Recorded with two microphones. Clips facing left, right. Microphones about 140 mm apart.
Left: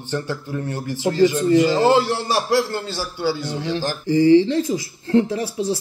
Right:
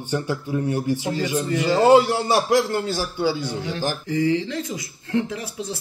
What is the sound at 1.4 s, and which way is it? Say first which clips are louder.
Speech: left 5 dB; 25° left (ahead or behind).